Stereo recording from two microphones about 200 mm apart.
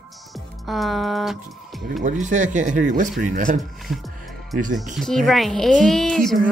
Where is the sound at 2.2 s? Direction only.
40° right (ahead or behind).